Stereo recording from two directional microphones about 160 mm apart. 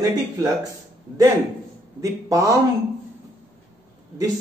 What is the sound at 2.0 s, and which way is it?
Speech, 20° right (ahead or behind).